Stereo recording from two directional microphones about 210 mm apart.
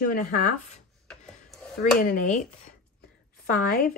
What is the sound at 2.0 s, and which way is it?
Speech, 40° left (ahead or behind).